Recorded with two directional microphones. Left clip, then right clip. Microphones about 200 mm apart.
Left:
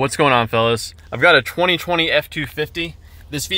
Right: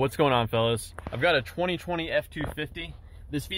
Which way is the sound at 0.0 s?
5° left (ahead or behind).